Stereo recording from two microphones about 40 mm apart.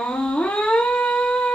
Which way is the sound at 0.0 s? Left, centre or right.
Left.